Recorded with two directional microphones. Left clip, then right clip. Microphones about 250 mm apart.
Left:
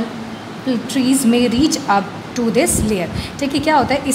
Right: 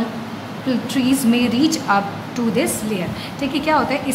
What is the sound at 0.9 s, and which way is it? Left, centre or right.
A woman's voice, centre.